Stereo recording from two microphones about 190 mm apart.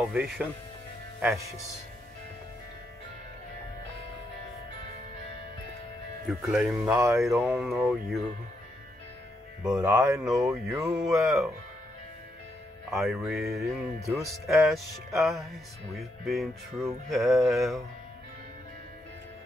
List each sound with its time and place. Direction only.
0.0 s speech: centre (ahead or behind)
6.2 s speech: 5° right (ahead or behind)
7.2 s speech: centre (ahead or behind)
9.6 s speech: 5° right (ahead or behind)
9.8 s speech: 15° right (ahead or behind)
10.2 s speech: 5° right (ahead or behind)
10.7 s speech: 15° right (ahead or behind)
11.0 s speech: centre (ahead or behind)
12.9 s speech: centre (ahead or behind)